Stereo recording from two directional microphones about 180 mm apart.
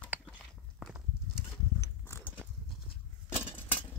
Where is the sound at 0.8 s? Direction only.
5° right (ahead or behind).